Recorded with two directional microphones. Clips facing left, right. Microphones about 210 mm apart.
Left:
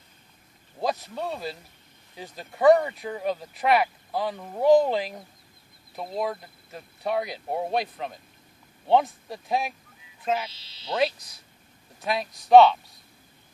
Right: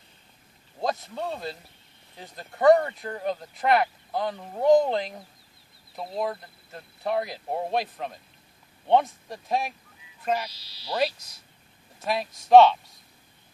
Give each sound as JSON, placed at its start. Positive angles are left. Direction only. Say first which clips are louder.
{"t": 0.7, "sound": "speech", "louder": "left 1 dB", "side_deg": 0}
{"t": 10.5, "sound": "speech", "louder": "even", "side_deg": 25}
{"t": 10.9, "sound": "speech", "louder": "left 1 dB", "side_deg": 0}